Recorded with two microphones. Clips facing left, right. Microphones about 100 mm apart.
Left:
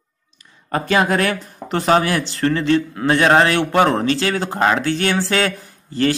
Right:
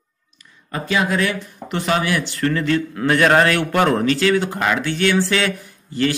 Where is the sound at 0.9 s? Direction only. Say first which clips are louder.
Left 2 dB; 55° left (ahead or behind).